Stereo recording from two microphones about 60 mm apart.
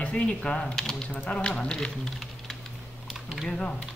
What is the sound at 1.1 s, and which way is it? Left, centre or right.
Speech, centre.